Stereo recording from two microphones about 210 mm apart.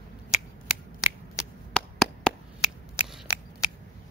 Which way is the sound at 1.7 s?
5° left (ahead or behind).